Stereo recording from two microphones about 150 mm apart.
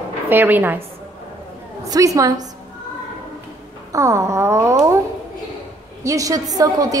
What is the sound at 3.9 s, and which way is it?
A woman's voice, 20° right (ahead or behind).